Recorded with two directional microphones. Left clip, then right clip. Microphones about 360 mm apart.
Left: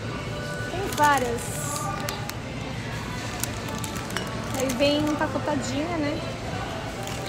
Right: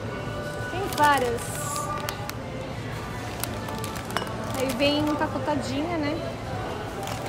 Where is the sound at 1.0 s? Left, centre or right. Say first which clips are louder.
Even; centre.